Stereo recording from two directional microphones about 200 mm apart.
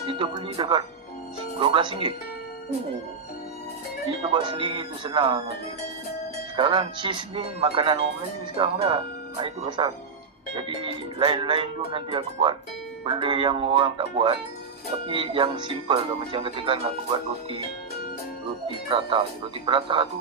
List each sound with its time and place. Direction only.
0.0 s speech: 25° right (ahead or behind)
4.3 s speech: 25° right (ahead or behind)
6.5 s speech: 25° right (ahead or behind)
18.9 s speech: 25° right (ahead or behind)